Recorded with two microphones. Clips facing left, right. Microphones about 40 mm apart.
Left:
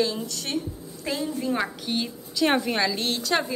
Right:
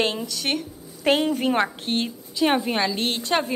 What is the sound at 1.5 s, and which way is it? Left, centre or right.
Speech, right.